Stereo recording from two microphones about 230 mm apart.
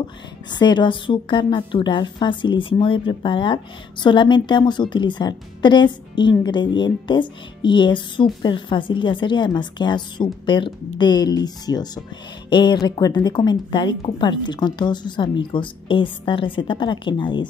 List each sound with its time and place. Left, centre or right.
0.5 s speech: centre